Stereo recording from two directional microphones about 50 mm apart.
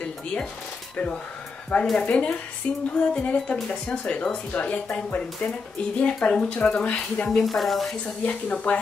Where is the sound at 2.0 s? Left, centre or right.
Left.